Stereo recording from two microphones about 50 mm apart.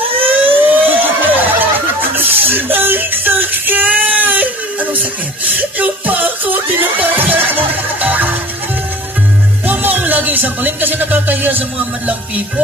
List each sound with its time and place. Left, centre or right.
0.2 s a sound: right
5.6 s music: right
9.7 s music: right